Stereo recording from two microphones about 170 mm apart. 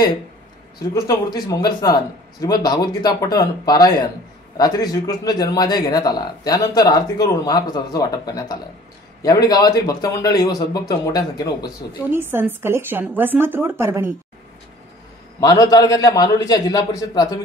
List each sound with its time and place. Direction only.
0.9 s speech: 20° left (ahead or behind)
12.1 s a woman's voice: 15° right (ahead or behind)
15.4 s speech: 20° left (ahead or behind)